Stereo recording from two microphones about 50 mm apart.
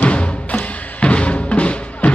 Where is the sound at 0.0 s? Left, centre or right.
Left.